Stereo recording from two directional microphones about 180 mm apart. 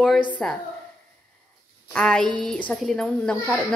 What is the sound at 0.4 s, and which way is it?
Speech, centre (ahead or behind).